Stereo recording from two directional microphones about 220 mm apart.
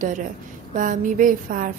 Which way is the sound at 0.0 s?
35° right (ahead or behind).